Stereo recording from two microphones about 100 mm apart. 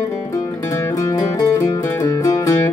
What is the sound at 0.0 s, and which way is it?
Music, 35° left (ahead or behind).